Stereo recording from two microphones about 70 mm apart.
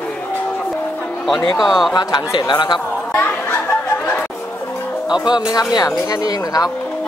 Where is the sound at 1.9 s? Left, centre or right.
Left.